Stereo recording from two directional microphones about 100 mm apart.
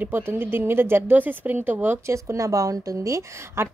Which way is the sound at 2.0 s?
30° right (ahead or behind).